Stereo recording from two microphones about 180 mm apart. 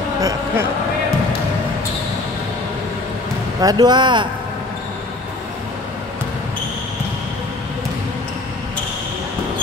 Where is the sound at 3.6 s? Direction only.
20° right (ahead or behind).